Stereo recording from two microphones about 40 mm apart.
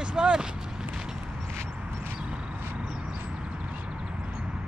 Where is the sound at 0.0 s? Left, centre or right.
Right.